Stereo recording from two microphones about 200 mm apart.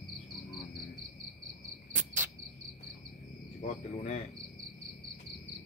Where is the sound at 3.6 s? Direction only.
35° left (ahead or behind).